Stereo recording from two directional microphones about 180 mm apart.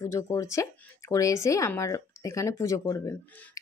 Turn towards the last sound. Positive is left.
turn(degrees=15)  # may be behind; listen again after turning